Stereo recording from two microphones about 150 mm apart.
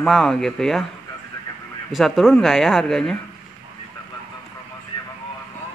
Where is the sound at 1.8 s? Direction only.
Centre (ahead or behind).